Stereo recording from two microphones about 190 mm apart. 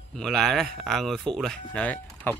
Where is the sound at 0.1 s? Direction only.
Centre (ahead or behind).